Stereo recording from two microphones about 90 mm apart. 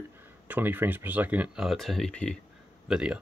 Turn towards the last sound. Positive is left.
turn(degrees=-10)  # may be behind; listen again after turning